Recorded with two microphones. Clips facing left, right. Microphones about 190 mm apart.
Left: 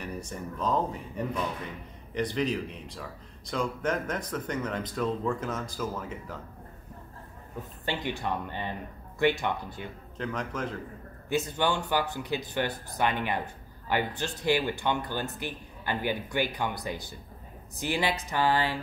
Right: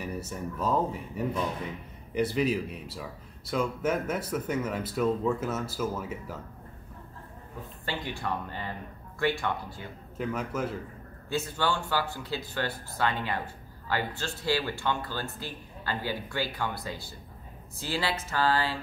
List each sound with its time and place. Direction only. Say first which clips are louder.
0.0 s speech: right 2 dB; 5° right (ahead or behind)
7.8 s speech: left 2 dB; 20° left (ahead or behind)
10.1 s speech: right 2 dB; 5° right (ahead or behind)
11.2 s speech: left 2 dB; 20° left (ahead or behind)